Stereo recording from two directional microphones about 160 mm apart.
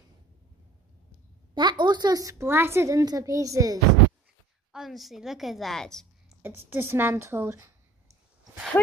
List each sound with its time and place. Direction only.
1.5 s a woman's voice: 30° right (ahead or behind)
4.7 s a woman's voice: centre (ahead or behind)
6.4 s a woman's voice: 15° right (ahead or behind)